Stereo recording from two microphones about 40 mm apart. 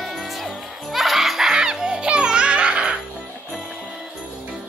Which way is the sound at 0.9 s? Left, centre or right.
Centre.